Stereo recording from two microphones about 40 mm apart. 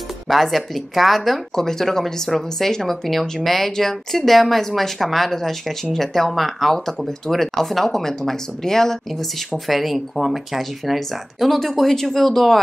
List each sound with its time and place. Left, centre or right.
0.3 s speech: centre
1.5 s speech: centre
9.7 s speech: centre